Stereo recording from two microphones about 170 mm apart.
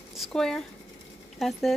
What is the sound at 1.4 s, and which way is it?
Speech, centre (ahead or behind).